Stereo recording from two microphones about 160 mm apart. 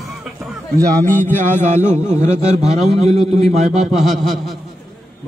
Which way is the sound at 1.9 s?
45° right (ahead or behind).